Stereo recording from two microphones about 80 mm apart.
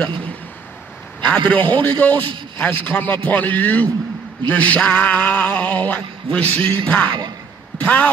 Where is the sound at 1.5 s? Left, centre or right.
Centre.